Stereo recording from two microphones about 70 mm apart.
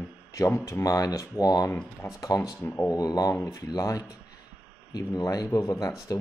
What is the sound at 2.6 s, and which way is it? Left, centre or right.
Speech, left.